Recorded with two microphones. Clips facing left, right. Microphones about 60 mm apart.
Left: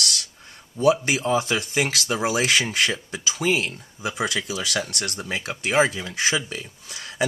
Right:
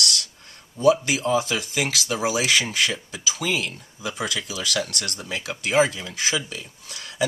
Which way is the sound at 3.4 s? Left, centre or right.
Left.